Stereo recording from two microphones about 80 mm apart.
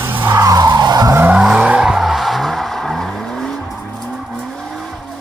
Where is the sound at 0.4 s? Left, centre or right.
Right.